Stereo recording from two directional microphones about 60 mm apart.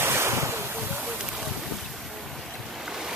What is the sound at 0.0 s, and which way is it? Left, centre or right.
Waves, right.